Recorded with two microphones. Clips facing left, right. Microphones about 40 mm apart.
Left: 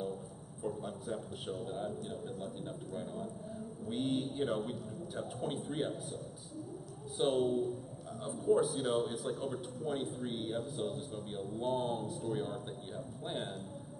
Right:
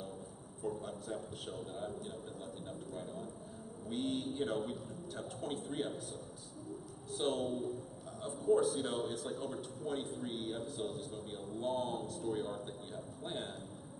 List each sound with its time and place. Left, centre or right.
0.7 s a man's voice: centre
7.2 s a man's voice: centre